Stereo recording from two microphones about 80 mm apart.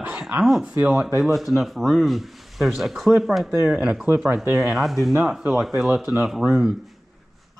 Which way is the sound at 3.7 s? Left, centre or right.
Centre.